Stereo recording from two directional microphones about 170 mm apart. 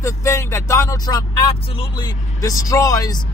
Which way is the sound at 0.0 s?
15° left (ahead or behind).